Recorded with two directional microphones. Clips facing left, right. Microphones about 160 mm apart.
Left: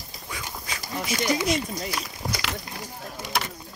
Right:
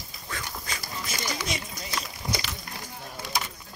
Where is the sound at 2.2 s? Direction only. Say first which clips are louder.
Even; 35° left (ahead or behind).